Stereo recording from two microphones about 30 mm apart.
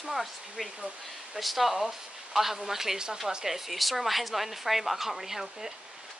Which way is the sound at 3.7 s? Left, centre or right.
Centre.